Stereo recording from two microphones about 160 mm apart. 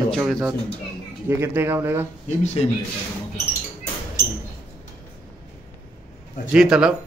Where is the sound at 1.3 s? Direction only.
15° right (ahead or behind).